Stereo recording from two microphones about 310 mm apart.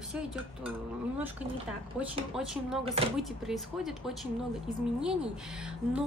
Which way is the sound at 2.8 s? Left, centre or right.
Centre.